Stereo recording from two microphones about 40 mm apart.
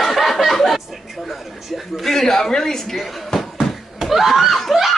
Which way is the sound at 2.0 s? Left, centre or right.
Centre.